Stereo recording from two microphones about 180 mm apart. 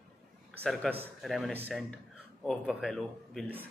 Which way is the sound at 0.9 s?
5° left (ahead or behind).